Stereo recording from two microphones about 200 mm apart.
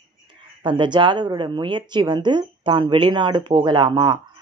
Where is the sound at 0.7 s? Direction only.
25° right (ahead or behind).